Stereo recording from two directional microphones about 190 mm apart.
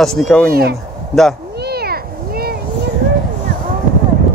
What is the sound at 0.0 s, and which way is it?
Speech, centre (ahead or behind).